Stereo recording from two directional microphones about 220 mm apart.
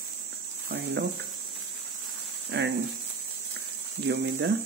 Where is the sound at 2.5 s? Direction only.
50° right (ahead or behind).